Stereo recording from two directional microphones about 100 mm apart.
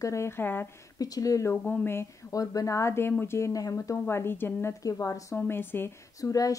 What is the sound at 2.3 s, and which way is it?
Speech, 35° left (ahead or behind).